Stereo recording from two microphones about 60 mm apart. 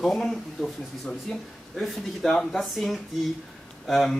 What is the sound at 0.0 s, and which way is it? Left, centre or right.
Speech, centre.